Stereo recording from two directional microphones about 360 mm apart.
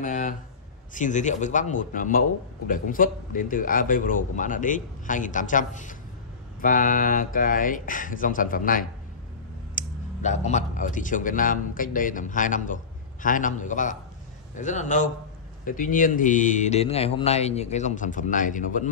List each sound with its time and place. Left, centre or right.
0.0 s a man's voice: left